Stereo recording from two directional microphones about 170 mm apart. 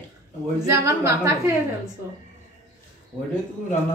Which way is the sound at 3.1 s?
Centre (ahead or behind).